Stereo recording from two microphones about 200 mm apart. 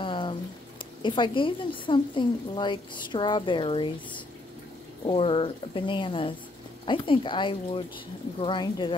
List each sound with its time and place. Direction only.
0.0 s a sound: 25° left (ahead or behind)
1.0 s a woman's voice: 25° left (ahead or behind)
5.0 s a woman's voice: 25° left (ahead or behind)